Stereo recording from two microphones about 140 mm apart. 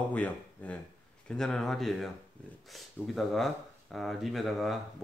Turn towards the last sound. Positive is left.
turn(degrees=0)  # may be behind; listen again after turning